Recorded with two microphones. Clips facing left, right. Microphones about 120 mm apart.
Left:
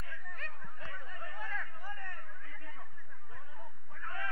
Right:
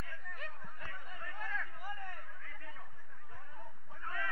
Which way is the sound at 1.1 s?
35° left (ahead or behind).